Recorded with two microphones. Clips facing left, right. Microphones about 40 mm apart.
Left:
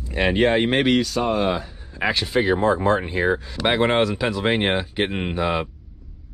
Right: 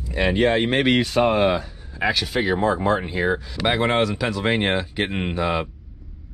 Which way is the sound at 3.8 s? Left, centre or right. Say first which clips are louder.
Left 2 dB; centre.